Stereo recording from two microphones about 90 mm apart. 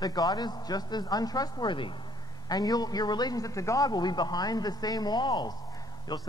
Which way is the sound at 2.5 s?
45° left (ahead or behind).